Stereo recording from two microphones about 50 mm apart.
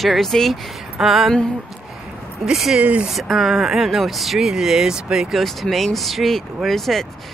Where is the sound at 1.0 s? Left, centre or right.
Centre.